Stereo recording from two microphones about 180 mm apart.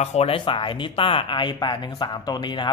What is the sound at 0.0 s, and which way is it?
Speech, 35° left (ahead or behind).